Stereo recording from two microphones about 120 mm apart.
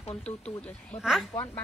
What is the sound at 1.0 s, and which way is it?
Speech, 5° right (ahead or behind).